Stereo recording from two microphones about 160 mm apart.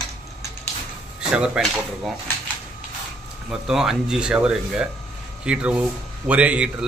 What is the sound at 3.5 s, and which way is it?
Speech, 5° right (ahead or behind).